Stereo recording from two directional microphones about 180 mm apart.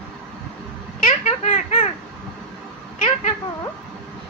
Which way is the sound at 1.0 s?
35° left (ahead or behind).